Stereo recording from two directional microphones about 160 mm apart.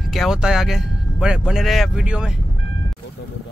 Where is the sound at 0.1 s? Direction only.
Centre (ahead or behind).